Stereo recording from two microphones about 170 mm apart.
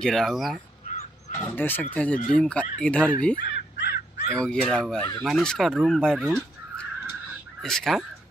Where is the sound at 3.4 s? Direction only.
65° left (ahead or behind).